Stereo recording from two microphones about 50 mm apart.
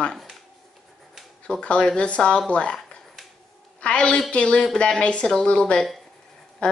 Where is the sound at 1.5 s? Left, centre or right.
Centre.